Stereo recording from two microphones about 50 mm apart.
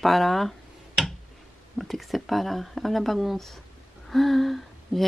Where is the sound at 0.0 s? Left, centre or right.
Centre.